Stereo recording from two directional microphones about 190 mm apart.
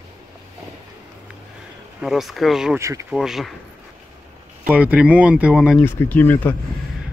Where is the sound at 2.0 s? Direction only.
Centre (ahead or behind).